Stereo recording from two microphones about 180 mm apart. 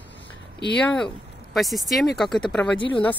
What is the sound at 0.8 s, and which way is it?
Speech, 5° left (ahead or behind).